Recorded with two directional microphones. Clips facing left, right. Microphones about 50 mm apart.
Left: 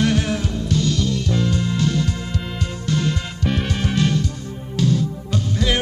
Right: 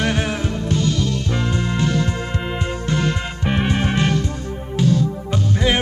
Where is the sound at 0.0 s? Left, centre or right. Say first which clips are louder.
Left 1 dB; right.